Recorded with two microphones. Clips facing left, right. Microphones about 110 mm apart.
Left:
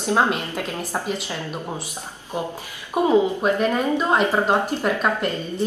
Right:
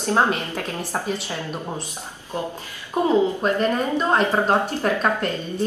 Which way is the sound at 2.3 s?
15° left (ahead or behind).